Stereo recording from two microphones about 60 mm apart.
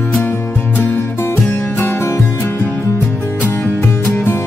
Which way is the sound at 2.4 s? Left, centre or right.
Left.